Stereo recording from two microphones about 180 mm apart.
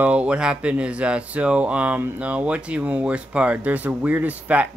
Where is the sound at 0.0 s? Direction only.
5° right (ahead or behind).